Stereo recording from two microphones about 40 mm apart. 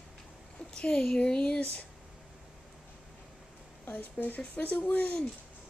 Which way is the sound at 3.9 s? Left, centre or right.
Left.